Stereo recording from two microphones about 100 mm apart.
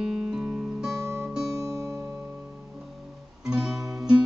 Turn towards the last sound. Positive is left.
turn(degrees=-5)  # may be behind; listen again after turning